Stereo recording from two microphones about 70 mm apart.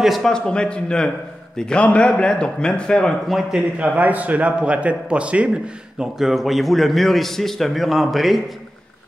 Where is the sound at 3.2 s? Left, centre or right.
Centre.